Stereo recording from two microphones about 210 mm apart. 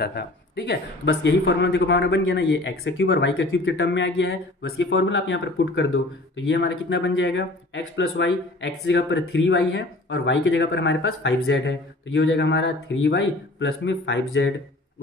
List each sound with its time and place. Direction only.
0.0 s speech: 50° left (ahead or behind)